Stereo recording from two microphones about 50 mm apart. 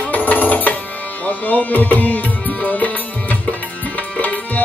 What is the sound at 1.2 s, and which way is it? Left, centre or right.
Tabla, left.